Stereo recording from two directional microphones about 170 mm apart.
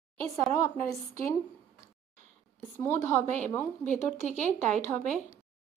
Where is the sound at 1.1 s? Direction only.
20° left (ahead or behind).